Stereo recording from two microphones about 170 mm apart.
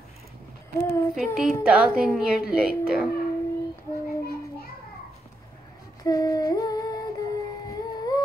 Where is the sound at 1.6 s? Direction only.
5° right (ahead or behind).